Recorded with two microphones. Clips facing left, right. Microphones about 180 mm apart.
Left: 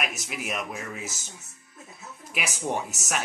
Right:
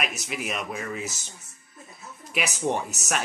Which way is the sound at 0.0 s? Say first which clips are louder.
Right 1 dB; 50° left (ahead or behind).